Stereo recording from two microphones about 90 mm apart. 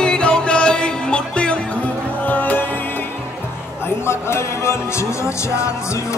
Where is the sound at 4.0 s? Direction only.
30° left (ahead or behind).